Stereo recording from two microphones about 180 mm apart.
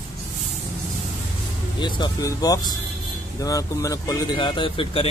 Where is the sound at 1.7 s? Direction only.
25° left (ahead or behind).